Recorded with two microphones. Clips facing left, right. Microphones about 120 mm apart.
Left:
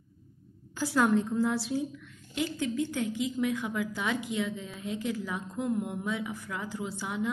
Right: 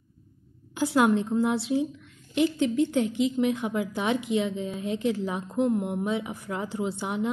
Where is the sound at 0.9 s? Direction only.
20° right (ahead or behind).